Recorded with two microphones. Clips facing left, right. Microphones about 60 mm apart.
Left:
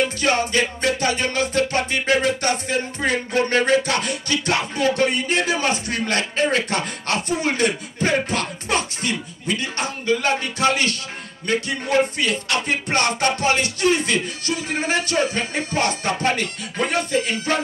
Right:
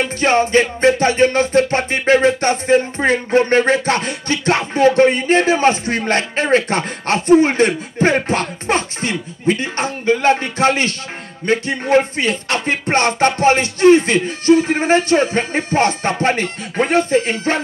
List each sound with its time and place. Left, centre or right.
0.0 s music: right